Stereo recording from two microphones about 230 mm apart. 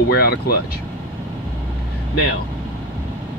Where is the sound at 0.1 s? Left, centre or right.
Left.